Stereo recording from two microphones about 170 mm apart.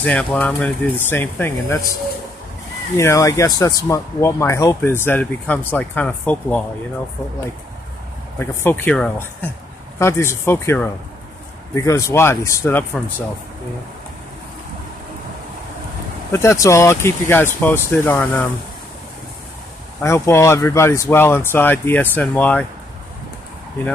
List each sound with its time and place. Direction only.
0.0 s speech: 5° left (ahead or behind)
3.0 s speech: 20° left (ahead or behind)
8.4 s speech: 10° left (ahead or behind)
16.3 s speech: 15° left (ahead or behind)
20.0 s speech: 15° left (ahead or behind)